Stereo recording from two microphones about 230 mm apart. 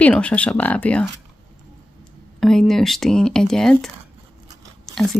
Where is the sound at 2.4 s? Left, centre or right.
Centre.